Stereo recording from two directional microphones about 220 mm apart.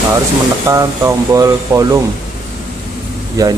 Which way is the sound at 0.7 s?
15° right (ahead or behind).